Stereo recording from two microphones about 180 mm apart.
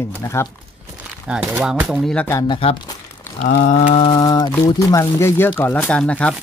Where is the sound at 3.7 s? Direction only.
40° left (ahead or behind); by 4.5 s 25° left (ahead or behind).